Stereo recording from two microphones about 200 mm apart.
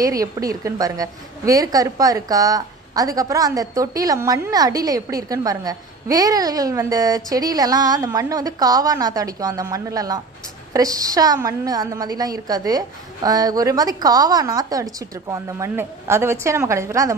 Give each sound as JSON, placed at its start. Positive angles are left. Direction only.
{"t": 0.0, "sound": "a woman's voice", "side_deg": -15}